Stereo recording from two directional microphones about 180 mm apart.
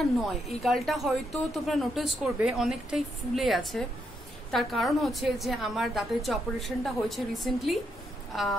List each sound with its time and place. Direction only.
0.6 s a woman's voice: centre (ahead or behind)